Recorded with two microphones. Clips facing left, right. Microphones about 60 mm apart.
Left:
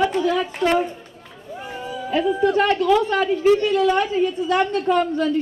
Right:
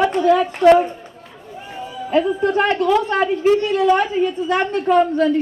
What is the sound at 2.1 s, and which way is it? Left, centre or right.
A woman's voice, right.